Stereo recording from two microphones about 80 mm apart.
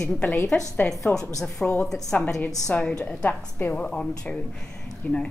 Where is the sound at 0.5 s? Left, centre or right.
Centre.